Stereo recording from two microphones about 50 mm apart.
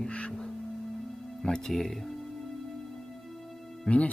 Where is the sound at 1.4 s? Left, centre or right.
Centre.